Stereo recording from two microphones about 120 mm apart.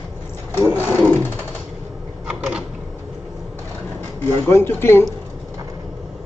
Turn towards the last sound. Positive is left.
turn(degrees=20)  # may be behind; listen again after turning